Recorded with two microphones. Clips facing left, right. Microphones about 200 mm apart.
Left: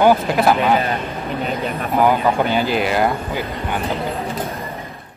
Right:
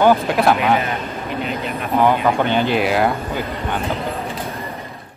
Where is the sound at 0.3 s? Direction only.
Centre (ahead or behind).